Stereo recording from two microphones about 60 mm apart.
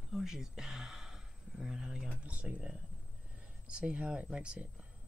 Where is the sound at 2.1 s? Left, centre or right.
Right.